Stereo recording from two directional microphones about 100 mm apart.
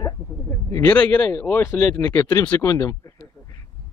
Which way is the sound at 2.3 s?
30° left (ahead or behind).